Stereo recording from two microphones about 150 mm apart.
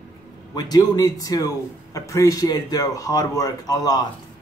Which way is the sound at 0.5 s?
25° left (ahead or behind).